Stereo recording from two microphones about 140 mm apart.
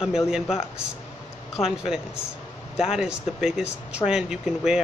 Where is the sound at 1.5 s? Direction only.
5° right (ahead or behind).